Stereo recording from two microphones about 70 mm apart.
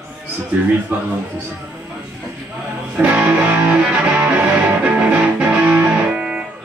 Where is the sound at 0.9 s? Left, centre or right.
Right.